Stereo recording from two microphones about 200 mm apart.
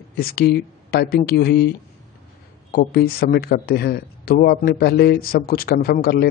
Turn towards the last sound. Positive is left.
turn(degrees=50)  # may be behind; listen again after turning